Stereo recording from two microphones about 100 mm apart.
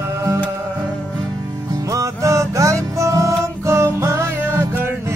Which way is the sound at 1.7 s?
35° right (ahead or behind).